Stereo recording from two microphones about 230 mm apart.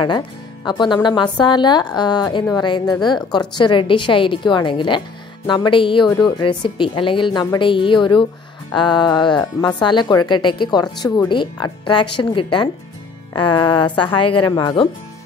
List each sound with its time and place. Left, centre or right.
0.7 s speech: centre